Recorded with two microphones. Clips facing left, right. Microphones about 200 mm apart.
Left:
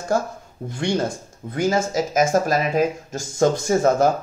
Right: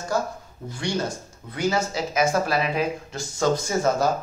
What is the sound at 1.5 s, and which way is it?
Speech, 50° left (ahead or behind).